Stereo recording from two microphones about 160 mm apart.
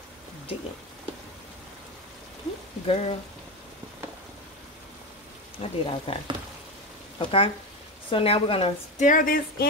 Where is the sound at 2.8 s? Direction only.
35° left (ahead or behind).